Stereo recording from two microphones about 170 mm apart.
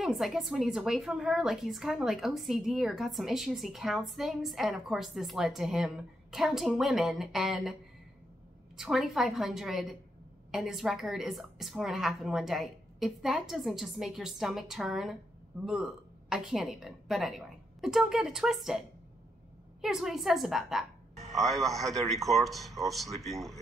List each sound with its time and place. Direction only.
0.0 s a woman's voice: centre (ahead or behind)
8.7 s a woman's voice: 5° right (ahead or behind)